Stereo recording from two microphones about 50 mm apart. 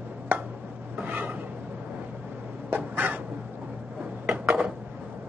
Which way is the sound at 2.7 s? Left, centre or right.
Right.